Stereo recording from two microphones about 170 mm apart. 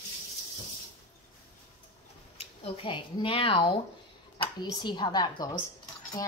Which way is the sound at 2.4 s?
30° left (ahead or behind).